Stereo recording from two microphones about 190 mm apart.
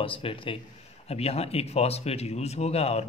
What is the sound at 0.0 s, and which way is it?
Speech, 30° left (ahead or behind).